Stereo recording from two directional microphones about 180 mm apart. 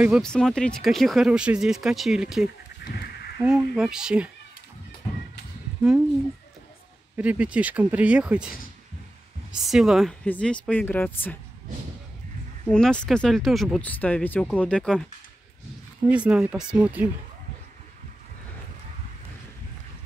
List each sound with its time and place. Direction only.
0.0 s speech: centre (ahead or behind)
2.8 s goat: 60° left (ahead or behind)
3.4 s speech: 5° right (ahead or behind)
5.8 s speech: 5° right (ahead or behind)
7.2 s speech: 5° right (ahead or behind); by 11.3 s 10° left (ahead or behind)
12.6 s speech: 5° left (ahead or behind)
16.1 s speech: 5° right (ahead or behind)